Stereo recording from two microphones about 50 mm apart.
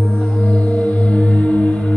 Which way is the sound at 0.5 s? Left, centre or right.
Left.